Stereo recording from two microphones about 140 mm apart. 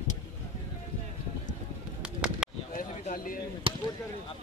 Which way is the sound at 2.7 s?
85° left.